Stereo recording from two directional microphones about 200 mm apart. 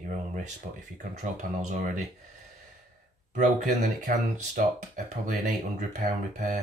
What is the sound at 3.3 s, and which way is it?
Speech, 40° right (ahead or behind).